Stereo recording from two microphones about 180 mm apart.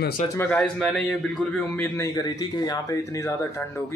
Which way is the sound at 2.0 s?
20° left (ahead or behind).